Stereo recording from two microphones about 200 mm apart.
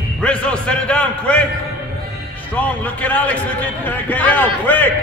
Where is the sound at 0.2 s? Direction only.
5° left (ahead or behind).